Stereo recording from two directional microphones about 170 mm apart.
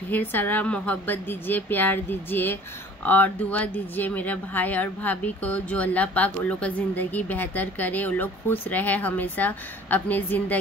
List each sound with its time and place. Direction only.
0.1 s speech: 10° left (ahead or behind)